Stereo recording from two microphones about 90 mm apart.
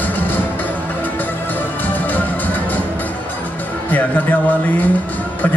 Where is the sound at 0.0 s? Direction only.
20° left (ahead or behind).